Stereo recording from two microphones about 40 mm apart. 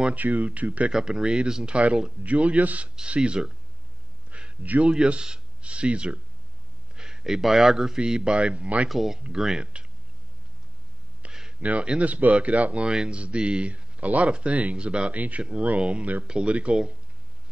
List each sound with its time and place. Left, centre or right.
0.1 s speech: right
0.9 s speech: centre; by 2.9 s right
3.0 s speech: right
4.3 s a sound: right
4.8 s speech: right
7.2 s speech: centre
7.7 s speech: centre; by 8.8 s right
8.8 s speech: centre
9.6 s speech: right
11.2 s a sound: right
11.6 s speech: right
12.8 s speech: right
15.1 s speech: right
16.3 s speech: right